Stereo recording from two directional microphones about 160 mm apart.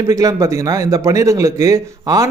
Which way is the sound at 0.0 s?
20° right (ahead or behind).